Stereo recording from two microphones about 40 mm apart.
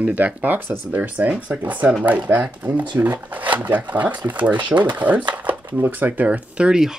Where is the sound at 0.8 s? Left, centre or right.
Right.